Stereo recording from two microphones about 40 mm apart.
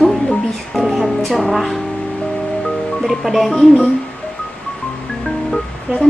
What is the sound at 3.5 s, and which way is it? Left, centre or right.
Speech, left.